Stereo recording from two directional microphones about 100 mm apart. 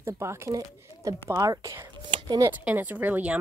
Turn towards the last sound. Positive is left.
turn(degrees=-15)  # may be behind; listen again after turning